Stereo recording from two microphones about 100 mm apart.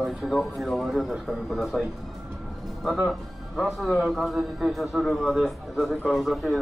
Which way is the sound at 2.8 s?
Centre (ahead or behind).